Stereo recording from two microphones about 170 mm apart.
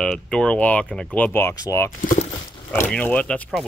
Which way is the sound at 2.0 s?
50° left (ahead or behind).